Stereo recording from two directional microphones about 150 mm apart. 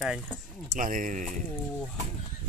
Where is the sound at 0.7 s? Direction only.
65° right (ahead or behind).